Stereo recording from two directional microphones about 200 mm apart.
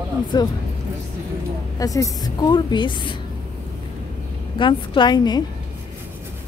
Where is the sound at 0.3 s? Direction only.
20° left (ahead or behind).